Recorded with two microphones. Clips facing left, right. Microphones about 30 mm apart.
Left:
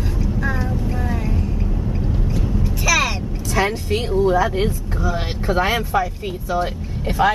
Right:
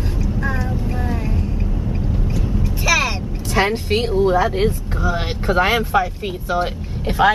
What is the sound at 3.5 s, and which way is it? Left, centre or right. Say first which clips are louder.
Speech: right 2 dB; right.